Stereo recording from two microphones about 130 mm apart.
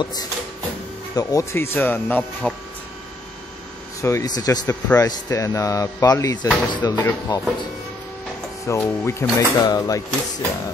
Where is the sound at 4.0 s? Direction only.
25° left (ahead or behind).